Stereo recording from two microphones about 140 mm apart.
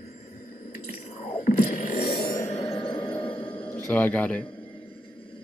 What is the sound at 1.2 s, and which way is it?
Music, 60° left (ahead or behind).